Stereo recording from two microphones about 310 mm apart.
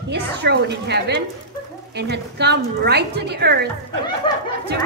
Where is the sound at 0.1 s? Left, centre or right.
Right.